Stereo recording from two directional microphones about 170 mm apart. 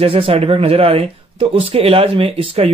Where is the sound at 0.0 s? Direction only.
35° right (ahead or behind).